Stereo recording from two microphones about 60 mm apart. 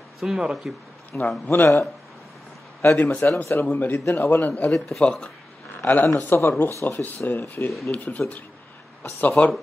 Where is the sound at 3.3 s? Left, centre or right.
Left.